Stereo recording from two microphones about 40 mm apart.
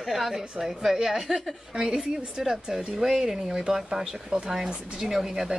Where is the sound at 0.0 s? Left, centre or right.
Centre.